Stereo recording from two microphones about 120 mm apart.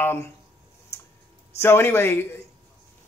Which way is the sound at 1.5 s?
20° left (ahead or behind).